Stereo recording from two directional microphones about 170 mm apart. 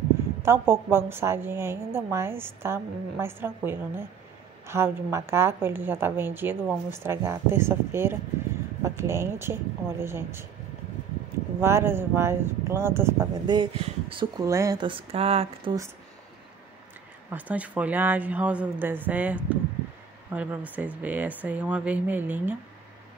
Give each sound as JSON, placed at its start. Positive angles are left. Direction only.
{"t": 0.4, "sound": "a woman's voice", "side_deg": -15}
{"t": 11.6, "sound": "a woman's voice", "side_deg": -15}
{"t": 13.5, "sound": "speech", "side_deg": -30}
{"t": 14.4, "sound": "speech", "side_deg": -20}
{"t": 17.3, "sound": "a woman's voice", "side_deg": -10}